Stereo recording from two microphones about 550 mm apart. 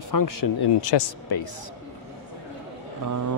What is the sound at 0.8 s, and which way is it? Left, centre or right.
Speech, left.